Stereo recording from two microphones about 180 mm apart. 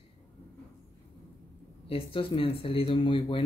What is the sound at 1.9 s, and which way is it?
Speech, 30° left (ahead or behind).